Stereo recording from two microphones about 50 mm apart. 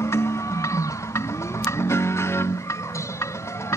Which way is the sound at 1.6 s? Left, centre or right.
Left.